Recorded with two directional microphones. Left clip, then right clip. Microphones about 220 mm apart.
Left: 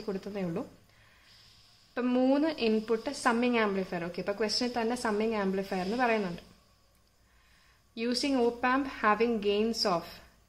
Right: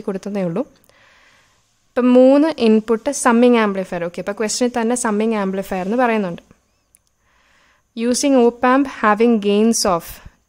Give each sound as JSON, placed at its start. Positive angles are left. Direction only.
{"t": 0.0, "sound": "a woman's voice", "side_deg": -55}
{"t": 7.9, "sound": "a woman's voice", "side_deg": -55}